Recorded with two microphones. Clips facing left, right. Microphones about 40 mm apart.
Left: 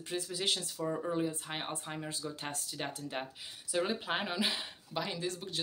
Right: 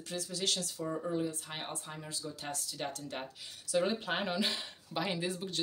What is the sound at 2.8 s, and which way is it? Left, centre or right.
Speech, centre.